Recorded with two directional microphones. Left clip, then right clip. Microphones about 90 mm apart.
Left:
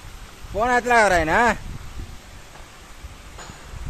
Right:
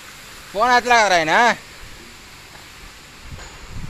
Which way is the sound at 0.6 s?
60° left (ahead or behind).